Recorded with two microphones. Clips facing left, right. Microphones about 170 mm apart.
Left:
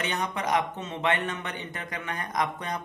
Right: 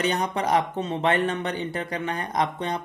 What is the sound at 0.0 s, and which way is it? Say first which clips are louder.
Speech: right 5 dB; 35° right (ahead or behind).